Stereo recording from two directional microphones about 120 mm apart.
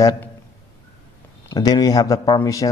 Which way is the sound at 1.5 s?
30° left (ahead or behind).